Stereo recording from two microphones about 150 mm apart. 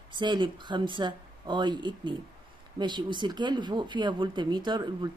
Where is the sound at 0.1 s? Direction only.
30° right (ahead or behind).